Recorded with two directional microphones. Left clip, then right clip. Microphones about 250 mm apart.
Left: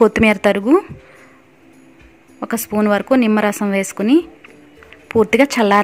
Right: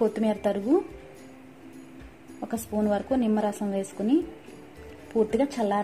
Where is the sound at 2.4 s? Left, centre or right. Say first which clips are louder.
Left 10 dB; left.